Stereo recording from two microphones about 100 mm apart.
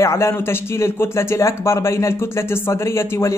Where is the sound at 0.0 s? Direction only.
30° left (ahead or behind).